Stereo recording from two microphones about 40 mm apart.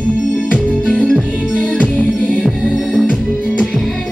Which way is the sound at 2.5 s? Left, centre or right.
Centre.